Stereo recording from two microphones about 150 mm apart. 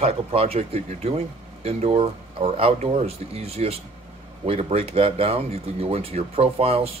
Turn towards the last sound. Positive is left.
turn(degrees=-40)  # may be behind; listen again after turning